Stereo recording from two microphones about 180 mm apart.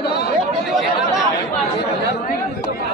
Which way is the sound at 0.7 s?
Centre (ahead or behind).